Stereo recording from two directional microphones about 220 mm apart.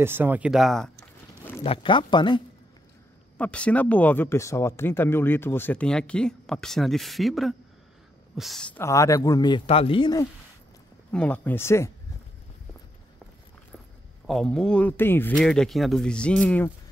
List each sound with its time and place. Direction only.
0.0 s speech: 10° right (ahead or behind)
1.6 s speech: 25° left (ahead or behind)
3.3 s speech: 5° left (ahead or behind); by 10.2 s 20° left (ahead or behind)
11.1 s speech: 5° left (ahead or behind)
14.2 s speech: centre (ahead or behind)